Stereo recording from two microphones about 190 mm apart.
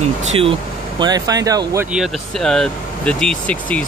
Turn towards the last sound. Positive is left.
turn(degrees=5)  # may be behind; listen again after turning